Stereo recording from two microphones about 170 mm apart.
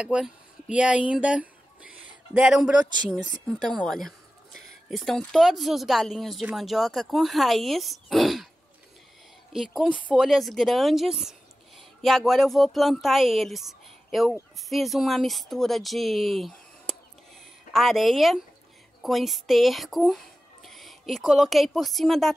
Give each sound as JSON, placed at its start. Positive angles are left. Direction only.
{"t": 0.0, "sound": "speech", "side_deg": -5}
{"t": 9.5, "sound": "a woman's voice", "side_deg": 0}